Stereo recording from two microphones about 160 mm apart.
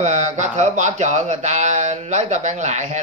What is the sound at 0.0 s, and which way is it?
Speech, 45° right (ahead or behind).